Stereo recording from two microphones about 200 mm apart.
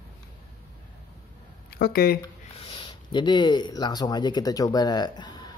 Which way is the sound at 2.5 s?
25° left (ahead or behind).